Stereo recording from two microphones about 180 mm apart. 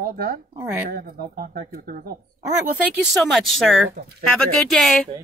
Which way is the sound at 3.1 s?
Centre (ahead or behind).